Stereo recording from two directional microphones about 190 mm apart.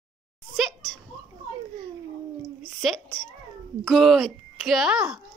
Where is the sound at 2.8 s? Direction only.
Centre (ahead or behind).